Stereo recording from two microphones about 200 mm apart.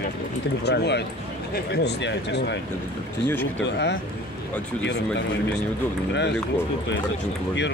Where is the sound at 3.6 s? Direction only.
60° left (ahead or behind).